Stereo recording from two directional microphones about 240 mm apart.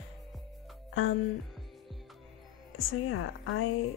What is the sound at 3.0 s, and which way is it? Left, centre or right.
Speech, left.